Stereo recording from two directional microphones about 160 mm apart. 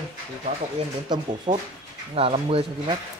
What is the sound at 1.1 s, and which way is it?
Speech, 25° right (ahead or behind).